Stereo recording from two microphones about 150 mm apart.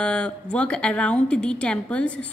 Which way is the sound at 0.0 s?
5° left (ahead or behind).